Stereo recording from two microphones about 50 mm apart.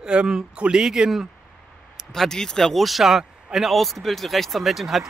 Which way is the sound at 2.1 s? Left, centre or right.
Centre.